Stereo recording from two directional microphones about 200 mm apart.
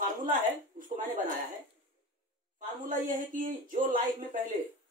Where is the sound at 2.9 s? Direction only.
40° right (ahead or behind).